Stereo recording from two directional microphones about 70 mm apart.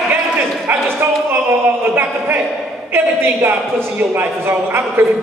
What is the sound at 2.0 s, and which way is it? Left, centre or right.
A man's voice, right.